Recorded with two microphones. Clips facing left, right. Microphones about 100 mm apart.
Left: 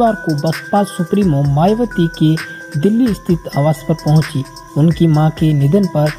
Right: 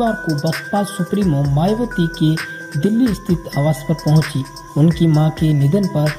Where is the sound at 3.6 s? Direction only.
40° left (ahead or behind).